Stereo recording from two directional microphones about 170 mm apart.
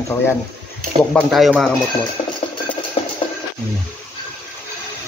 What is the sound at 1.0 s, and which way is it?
Speech, 5° left (ahead or behind).